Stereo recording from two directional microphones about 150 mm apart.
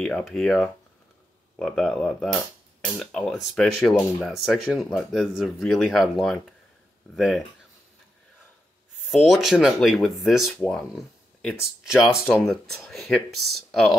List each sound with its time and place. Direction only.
0.0 s speech: 5° left (ahead or behind)
9.0 s speech: centre (ahead or behind)